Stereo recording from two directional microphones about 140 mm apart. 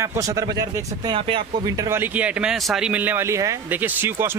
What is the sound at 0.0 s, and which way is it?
Speech, 20° right (ahead or behind).